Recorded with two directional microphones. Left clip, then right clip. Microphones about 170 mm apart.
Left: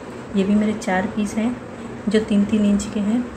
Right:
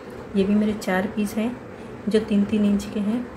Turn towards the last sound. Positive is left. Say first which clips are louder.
# left 3 dB
turn(degrees=0)  # may be behind; listen again after turning